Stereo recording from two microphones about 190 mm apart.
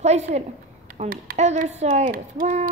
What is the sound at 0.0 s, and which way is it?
Speech, 35° right (ahead or behind).